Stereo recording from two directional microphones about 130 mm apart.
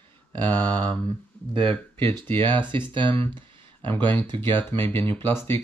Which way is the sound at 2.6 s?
40° right (ahead or behind).